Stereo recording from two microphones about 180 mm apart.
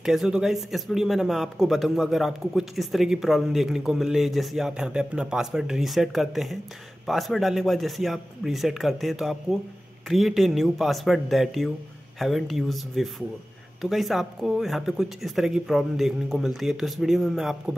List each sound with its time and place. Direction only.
0.0 s speech: centre (ahead or behind)